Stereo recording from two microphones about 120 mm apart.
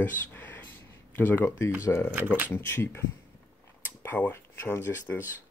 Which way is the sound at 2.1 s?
15° right (ahead or behind).